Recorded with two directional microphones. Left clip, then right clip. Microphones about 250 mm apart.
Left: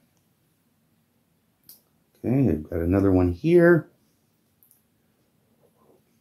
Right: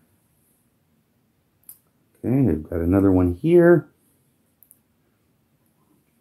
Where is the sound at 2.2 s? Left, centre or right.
Right.